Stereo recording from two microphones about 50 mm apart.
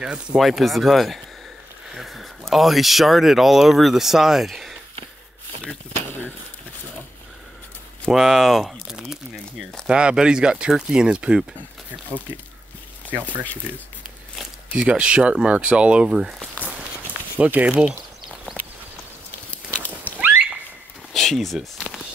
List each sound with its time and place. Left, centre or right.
0.0 s speech: centre
0.4 s speech: centre
8.1 s speech: centre
9.0 s crumpling: centre
9.8 s speech: centre
13.1 s speech: right
14.3 s a sound: centre
14.9 s speech: right
16.1 s speech: centre
17.4 s speech: right
20.2 s a sound: right
21.1 s a sound: centre